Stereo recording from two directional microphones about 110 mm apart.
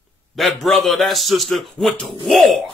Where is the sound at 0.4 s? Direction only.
Centre (ahead or behind).